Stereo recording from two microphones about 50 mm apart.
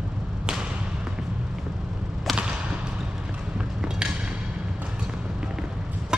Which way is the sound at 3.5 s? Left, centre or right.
Centre.